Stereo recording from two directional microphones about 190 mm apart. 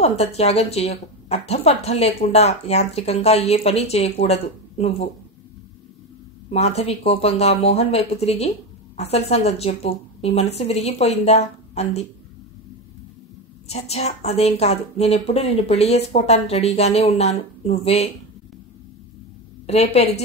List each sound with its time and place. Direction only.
0.0 s speech: 35° left (ahead or behind)
6.5 s speech: 35° left (ahead or behind)
13.7 s speech: 35° left (ahead or behind)
19.6 s speech: 35° left (ahead or behind)